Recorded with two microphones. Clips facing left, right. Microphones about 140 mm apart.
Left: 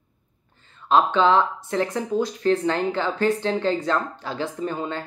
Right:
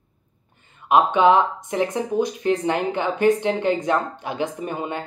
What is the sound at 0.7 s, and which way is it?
Speech, 15° right (ahead or behind).